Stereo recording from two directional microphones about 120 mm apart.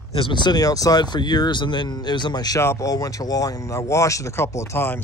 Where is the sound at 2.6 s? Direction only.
25° left (ahead or behind).